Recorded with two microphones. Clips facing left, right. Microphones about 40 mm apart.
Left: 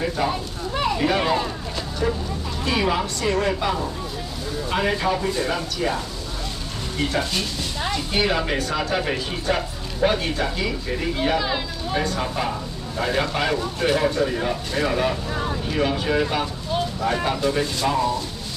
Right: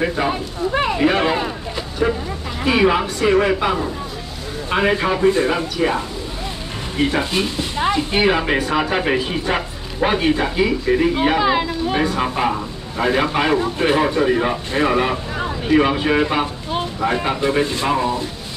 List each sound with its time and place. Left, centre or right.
0.0 s speech: right
0.7 s a sound: right
2.6 s speech: right